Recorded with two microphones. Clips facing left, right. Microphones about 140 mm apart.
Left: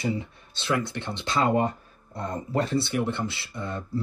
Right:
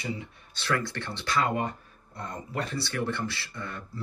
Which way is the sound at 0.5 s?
20° left (ahead or behind).